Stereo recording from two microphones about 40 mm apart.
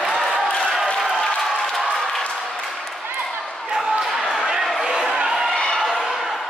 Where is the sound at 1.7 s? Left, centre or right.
Centre.